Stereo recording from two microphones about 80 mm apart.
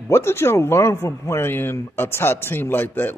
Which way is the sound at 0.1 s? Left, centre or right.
Left.